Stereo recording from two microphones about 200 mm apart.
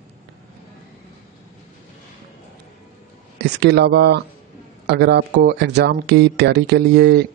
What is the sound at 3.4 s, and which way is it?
A man's voice, 55° right (ahead or behind).